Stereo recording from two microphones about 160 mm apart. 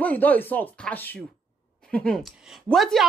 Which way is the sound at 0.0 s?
10° left (ahead or behind).